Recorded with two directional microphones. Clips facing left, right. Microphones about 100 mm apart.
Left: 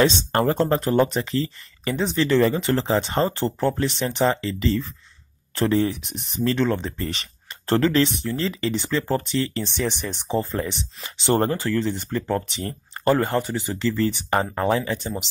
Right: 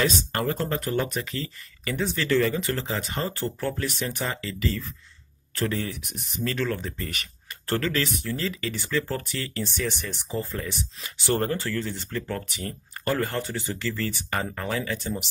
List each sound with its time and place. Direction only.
0.0 s speech: 25° left (ahead or behind)
2.4 s speech: 30° left (ahead or behind)